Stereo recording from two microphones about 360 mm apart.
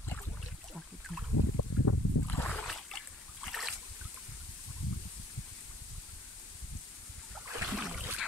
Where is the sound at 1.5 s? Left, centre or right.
Left.